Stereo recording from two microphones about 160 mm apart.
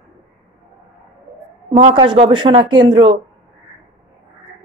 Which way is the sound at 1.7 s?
35° right (ahead or behind).